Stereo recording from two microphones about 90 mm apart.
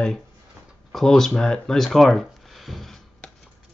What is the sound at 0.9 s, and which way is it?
Speech, 5° left (ahead or behind).